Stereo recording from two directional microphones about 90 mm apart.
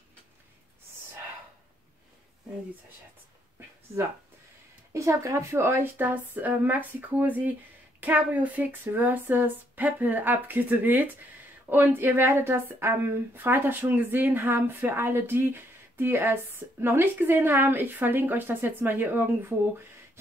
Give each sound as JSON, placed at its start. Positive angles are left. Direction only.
{"t": 4.9, "sound": "a woman's voice", "side_deg": -35}